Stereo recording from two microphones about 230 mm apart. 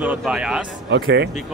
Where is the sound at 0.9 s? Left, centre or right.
Right.